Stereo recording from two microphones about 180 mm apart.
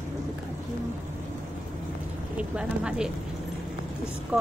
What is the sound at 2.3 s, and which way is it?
Speech, 5° right (ahead or behind).